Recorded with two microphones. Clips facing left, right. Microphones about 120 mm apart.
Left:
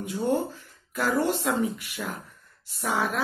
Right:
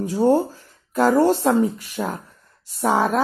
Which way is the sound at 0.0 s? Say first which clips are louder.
Right 8 dB; 40° right (ahead or behind).